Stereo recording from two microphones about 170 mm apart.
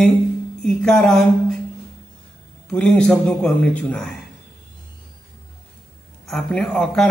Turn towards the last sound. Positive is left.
turn(degrees=5)  # may be behind; listen again after turning